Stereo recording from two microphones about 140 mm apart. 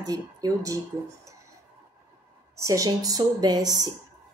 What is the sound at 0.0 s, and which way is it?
Speech, 25° right (ahead or behind).